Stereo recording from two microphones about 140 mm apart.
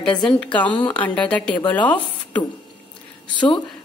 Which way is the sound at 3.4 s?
35° left (ahead or behind).